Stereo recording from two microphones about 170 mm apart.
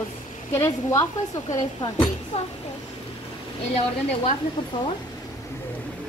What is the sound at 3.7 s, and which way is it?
Speech, 35° left (ahead or behind).